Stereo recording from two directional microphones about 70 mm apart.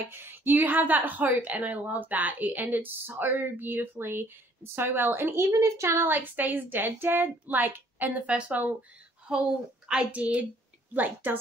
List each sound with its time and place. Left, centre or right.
0.1 s a woman's voice: right
5.5 s a woman's voice: right
6.0 s a woman's voice: right